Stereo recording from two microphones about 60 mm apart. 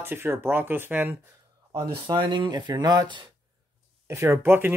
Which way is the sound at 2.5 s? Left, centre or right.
Right.